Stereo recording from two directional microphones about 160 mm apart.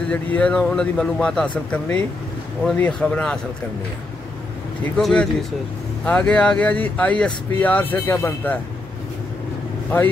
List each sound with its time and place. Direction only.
0.1 s speech: 10° left (ahead or behind)
4.9 s speech: 5° left (ahead or behind)